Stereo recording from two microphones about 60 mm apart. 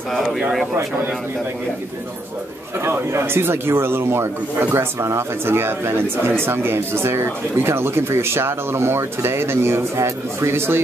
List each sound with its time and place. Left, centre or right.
2.8 s speech: right